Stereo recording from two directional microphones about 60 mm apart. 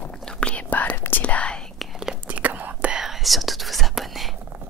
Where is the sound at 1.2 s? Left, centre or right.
Centre.